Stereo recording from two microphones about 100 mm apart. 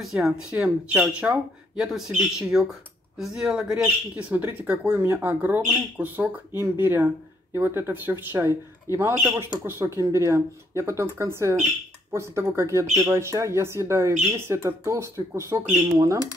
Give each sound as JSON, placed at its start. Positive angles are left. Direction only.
{"t": 0.0, "sound": "speech", "side_deg": -5}